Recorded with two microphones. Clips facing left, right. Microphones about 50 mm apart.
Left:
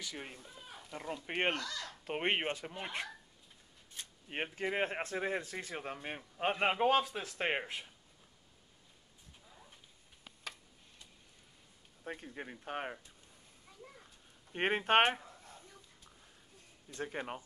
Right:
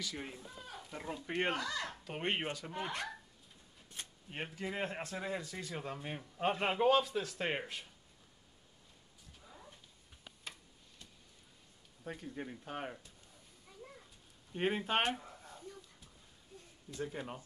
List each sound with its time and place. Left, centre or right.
0.0 s a man's voice: left
0.5 s a sound: centre
0.9 s speech: left
1.5 s speech: centre
2.0 s a man's voice: left
4.3 s a man's voice: left
12.2 s a man's voice: left
13.7 s a sound: centre
14.5 s speech: left
16.9 s speech: left